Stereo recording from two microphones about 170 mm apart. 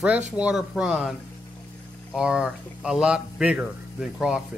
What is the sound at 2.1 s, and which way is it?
Speech, 5° right (ahead or behind).